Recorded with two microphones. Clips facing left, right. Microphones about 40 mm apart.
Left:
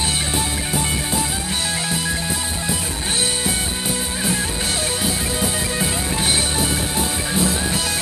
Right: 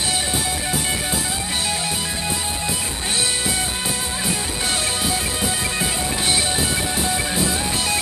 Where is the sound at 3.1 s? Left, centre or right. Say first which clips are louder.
Even; left.